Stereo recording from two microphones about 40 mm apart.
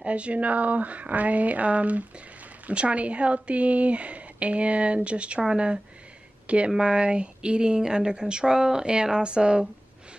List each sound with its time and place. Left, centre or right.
0.0 s a woman's voice: right